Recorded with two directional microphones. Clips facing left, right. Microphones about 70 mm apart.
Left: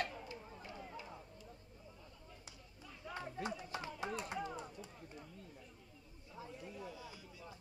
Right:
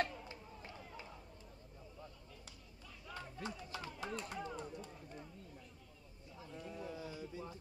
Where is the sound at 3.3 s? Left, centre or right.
Left.